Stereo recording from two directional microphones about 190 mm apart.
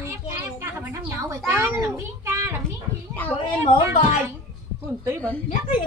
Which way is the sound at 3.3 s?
30° left (ahead or behind).